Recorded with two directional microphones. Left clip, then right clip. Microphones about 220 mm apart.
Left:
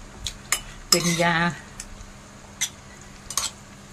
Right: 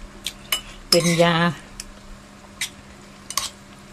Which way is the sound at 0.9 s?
Centre (ahead or behind).